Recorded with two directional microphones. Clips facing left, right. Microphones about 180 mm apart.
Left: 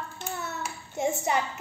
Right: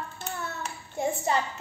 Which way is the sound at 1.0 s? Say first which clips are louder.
Even; 15° left (ahead or behind).